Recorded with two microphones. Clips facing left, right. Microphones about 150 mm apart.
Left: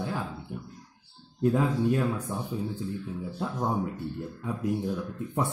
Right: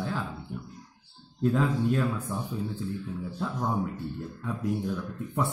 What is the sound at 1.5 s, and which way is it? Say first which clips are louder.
Speech: even; 15° left (ahead or behind).